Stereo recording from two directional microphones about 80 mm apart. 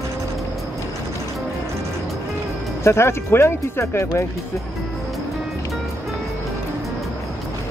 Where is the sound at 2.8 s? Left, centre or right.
Left.